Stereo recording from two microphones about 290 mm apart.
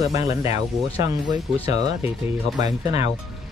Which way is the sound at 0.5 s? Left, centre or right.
Centre.